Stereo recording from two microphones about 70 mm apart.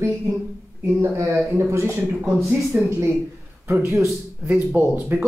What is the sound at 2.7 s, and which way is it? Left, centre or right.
Speech, centre.